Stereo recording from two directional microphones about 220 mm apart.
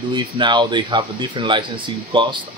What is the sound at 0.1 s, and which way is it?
Speech, 20° right (ahead or behind).